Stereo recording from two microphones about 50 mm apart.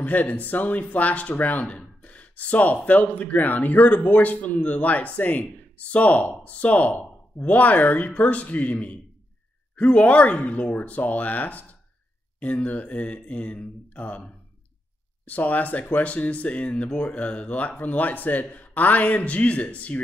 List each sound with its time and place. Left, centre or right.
0.0 s speech: left